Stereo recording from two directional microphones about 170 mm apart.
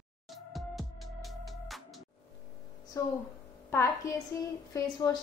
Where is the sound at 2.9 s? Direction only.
20° left (ahead or behind).